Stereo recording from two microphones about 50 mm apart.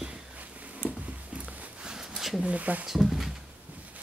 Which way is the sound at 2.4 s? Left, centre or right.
Right.